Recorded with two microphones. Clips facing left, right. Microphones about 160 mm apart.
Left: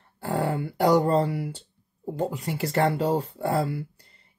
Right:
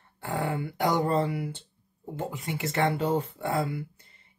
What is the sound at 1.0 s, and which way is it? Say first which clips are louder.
Speech: left 3 dB; 30° left (ahead or behind).